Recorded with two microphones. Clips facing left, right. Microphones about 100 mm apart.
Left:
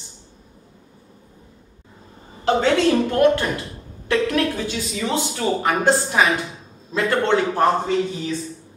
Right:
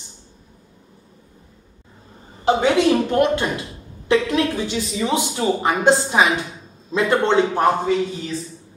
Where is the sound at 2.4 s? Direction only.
15° right (ahead or behind).